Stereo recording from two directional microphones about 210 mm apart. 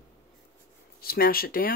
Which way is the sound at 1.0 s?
45° left (ahead or behind).